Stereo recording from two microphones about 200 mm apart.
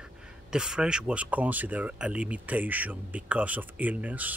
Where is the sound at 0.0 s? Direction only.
5° right (ahead or behind).